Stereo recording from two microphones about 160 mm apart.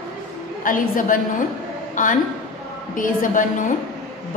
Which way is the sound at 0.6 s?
55° left (ahead or behind).